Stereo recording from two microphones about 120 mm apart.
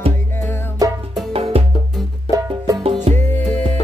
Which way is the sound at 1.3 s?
55° right (ahead or behind).